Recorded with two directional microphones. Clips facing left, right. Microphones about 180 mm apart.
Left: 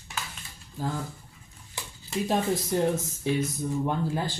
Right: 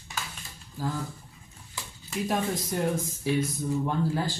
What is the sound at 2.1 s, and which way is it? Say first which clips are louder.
Speech: left 2 dB; 25° left (ahead or behind).